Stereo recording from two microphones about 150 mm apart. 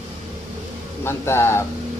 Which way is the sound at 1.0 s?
15° left (ahead or behind).